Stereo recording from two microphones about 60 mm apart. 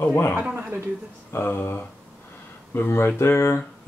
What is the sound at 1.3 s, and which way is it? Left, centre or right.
Speech, left.